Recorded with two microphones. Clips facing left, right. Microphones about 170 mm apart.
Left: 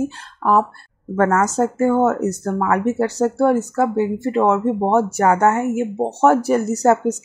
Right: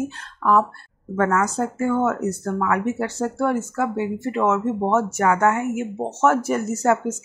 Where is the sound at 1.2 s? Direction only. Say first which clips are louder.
Left 4 dB; 45° left (ahead or behind).